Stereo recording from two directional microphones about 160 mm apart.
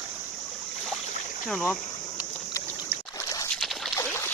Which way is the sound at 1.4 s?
5° left (ahead or behind).